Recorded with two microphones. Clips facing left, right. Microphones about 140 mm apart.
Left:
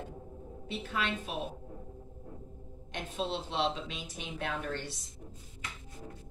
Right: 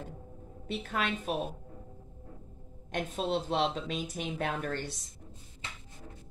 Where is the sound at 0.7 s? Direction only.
50° right (ahead or behind).